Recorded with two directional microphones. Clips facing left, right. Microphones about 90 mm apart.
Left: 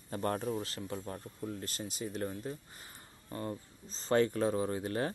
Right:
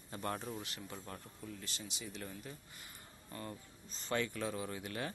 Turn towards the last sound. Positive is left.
turn(degrees=35)  # may be behind; listen again after turning